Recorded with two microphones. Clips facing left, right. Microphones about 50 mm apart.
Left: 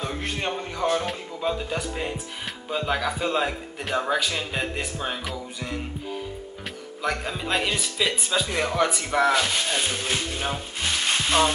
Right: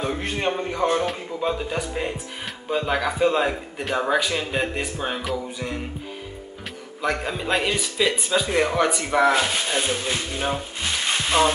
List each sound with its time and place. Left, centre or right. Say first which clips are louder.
0.0 s speech: right 4 dB; centre
1.4 s speech: right 2 dB; centre
7.0 s speech: right 3 dB; centre
10.8 s music: left 3 dB; centre